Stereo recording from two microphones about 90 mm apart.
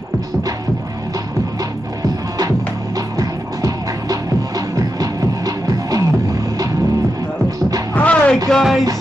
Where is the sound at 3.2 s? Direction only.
40° right (ahead or behind).